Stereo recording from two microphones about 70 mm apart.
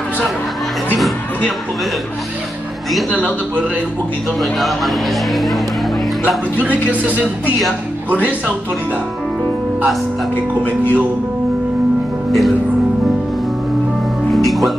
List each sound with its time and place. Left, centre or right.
3.1 s speech: left
4.4 s speech: centre
6.9 s speech: right
10.3 s speech: left
12.3 s speech: centre
14.3 s music: centre